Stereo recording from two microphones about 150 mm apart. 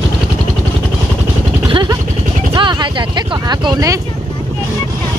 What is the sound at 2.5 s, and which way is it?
Speech, 30° right (ahead or behind).